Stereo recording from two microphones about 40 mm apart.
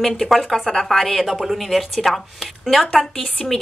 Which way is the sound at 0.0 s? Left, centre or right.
Centre.